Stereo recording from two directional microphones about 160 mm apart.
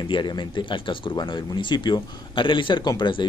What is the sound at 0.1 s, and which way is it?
Speech, 30° left (ahead or behind).